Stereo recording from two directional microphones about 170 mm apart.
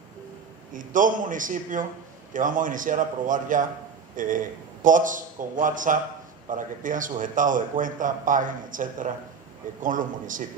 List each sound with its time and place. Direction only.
0.7 s a man's voice: 50° right (ahead or behind)